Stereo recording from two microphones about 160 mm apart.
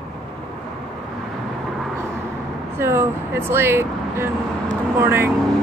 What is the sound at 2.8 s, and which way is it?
Speech, 15° right (ahead or behind).